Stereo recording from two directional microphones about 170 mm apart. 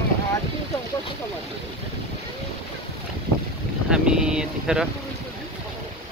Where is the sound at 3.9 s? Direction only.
5° right (ahead or behind).